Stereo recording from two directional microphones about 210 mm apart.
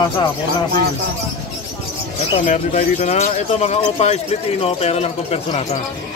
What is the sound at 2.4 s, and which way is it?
Speech, 35° left (ahead or behind).